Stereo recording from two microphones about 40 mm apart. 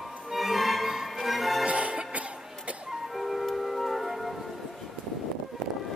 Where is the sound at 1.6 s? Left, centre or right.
Right.